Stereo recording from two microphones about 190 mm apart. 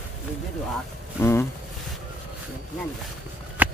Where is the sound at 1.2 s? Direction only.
15° left (ahead or behind).